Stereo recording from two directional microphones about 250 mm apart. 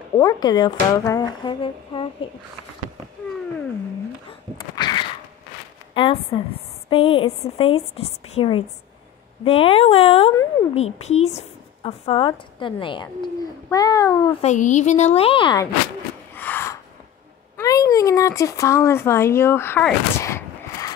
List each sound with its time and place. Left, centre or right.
0.2 s speech: centre
4.3 s a sound: centre
6.9 s speech: left
14.4 s speech: left
16.3 s a sound: centre
17.6 s speech: centre